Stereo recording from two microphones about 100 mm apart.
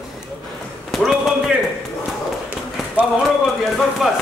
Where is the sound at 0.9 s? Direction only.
5° right (ahead or behind).